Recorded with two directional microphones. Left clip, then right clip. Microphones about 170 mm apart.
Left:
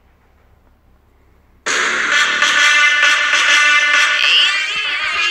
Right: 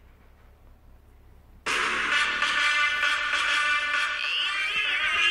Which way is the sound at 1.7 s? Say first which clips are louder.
Left 10 dB; 25° left (ahead or behind).